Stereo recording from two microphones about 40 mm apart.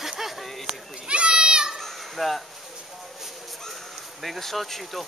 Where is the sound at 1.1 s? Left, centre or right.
Right.